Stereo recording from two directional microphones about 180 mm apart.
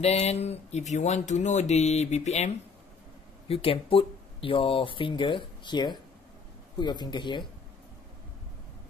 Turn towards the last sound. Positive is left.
turn(degrees=25)  # may be behind; listen again after turning